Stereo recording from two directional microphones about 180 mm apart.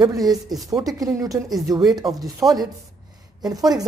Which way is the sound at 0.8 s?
20° right (ahead or behind).